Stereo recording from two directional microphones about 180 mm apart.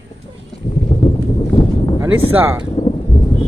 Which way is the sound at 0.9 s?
25° left (ahead or behind).